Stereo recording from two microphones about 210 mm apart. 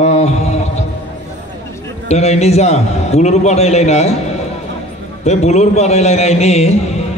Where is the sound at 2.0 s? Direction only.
30° left (ahead or behind).